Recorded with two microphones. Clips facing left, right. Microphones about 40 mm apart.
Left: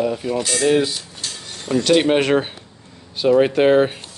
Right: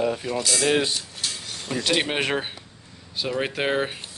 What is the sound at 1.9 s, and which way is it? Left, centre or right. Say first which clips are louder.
Speech: left 9 dB; centre.